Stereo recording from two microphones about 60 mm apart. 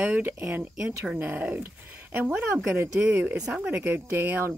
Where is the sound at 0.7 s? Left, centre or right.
Centre.